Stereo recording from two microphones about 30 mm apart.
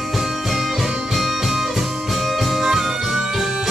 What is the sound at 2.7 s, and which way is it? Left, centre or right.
Music, centre.